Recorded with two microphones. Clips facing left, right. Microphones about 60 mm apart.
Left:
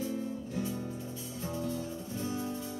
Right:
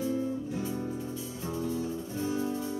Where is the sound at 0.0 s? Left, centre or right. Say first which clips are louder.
Right 5 dB; centre.